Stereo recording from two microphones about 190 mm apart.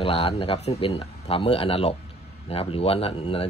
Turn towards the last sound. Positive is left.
turn(degrees=30)  # may be behind; listen again after turning